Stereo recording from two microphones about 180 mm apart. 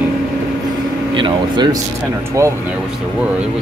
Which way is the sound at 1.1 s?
25° right (ahead or behind).